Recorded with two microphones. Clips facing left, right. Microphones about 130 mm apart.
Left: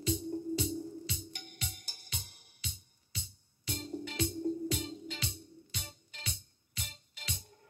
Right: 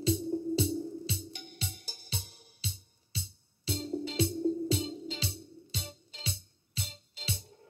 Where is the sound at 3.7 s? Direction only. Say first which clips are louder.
Right 5 dB; 30° right (ahead or behind).